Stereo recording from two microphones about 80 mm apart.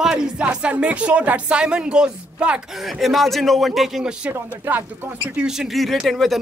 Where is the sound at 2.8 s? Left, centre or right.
Centre.